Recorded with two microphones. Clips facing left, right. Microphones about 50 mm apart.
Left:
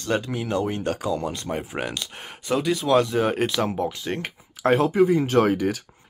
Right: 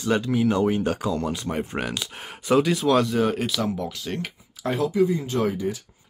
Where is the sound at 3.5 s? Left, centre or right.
Left.